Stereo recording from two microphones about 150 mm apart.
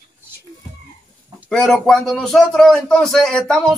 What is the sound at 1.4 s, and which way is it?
A man's voice, 5° left (ahead or behind).